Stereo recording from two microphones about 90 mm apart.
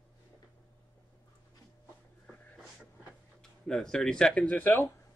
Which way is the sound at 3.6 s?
5° left (ahead or behind).